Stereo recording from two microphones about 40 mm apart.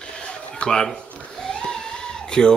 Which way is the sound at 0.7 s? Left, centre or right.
Centre.